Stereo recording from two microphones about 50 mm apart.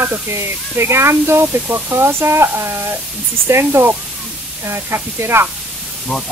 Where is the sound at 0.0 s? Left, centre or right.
Right.